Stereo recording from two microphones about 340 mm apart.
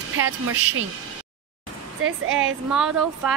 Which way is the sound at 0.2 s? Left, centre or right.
Right.